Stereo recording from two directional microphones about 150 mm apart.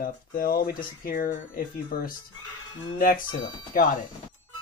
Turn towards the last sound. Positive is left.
turn(degrees=65)  # may be behind; listen again after turning